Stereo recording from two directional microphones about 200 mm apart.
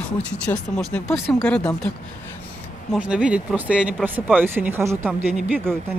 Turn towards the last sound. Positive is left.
turn(degrees=-5)  # may be behind; listen again after turning